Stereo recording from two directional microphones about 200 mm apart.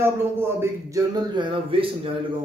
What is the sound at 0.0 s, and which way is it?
A man's voice, 10° right (ahead or behind).